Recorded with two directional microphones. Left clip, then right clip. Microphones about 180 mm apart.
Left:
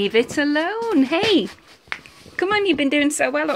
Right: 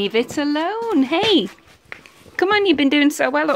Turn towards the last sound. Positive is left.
turn(degrees=-25)  # may be behind; listen again after turning